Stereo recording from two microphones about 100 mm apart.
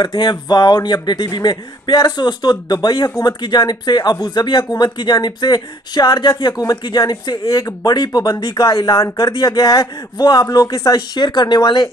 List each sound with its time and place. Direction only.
0.0 s a man's voice: 45° left (ahead or behind)
8.6 s speech: 35° left (ahead or behind)
11.0 s a man's voice: 45° left (ahead or behind)